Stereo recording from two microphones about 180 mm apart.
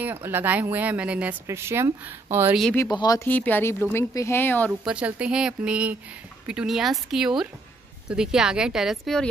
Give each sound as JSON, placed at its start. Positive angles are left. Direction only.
{"t": 0.0, "sound": "speech", "side_deg": -10}
{"t": 2.7, "sound": "speech", "side_deg": 20}
{"t": 3.3, "sound": "speech", "side_deg": 10}
{"t": 4.8, "sound": "speech", "side_deg": -5}